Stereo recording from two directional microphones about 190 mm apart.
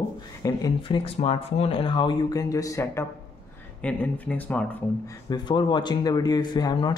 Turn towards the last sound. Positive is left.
turn(degrees=25)  # may be behind; listen again after turning